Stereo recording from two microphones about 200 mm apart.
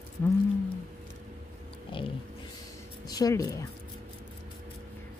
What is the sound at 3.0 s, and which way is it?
Music, 20° left (ahead or behind).